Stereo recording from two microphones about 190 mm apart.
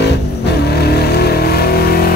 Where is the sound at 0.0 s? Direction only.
60° left (ahead or behind).